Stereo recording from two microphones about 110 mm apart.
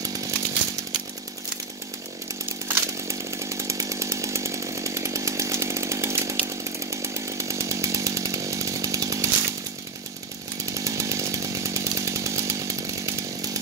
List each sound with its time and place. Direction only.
0.0 s chainsaw: 35° right (ahead or behind)
2.7 s chainsaw: 25° right (ahead or behind)
10.6 s chainsaw: 30° right (ahead or behind)